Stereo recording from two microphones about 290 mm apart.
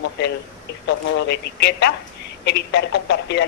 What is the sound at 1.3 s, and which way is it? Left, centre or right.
Speech, left.